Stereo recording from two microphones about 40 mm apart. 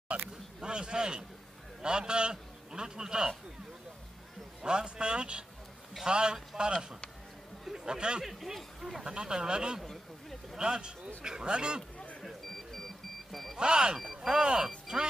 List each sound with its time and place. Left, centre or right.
0.1 s a sound: right
0.6 s a man's voice: right
4.6 s speech: right
8.2 s speech: centre
9.0 s speech: centre
12.3 s music: centre
13.6 s speech: right
13.9 s speech: centre; by 15.0 s right